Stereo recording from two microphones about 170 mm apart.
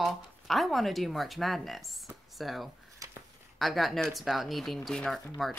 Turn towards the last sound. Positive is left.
turn(degrees=0)  # may be behind; listen again after turning